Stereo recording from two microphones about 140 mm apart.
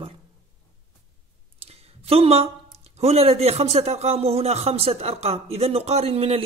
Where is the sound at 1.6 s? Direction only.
45° right (ahead or behind).